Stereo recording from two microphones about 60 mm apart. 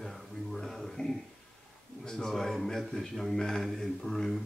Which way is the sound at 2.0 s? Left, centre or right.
Centre.